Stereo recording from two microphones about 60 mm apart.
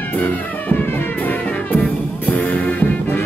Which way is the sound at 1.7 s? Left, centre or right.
Left.